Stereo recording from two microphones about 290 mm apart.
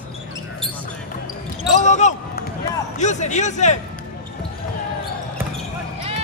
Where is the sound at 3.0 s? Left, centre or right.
Left.